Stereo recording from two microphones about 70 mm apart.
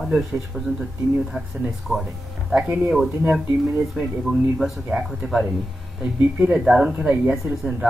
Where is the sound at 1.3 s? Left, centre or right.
Centre.